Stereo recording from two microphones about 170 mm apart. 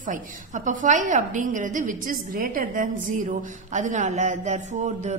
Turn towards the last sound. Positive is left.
turn(degrees=-45)  # may be behind; listen again after turning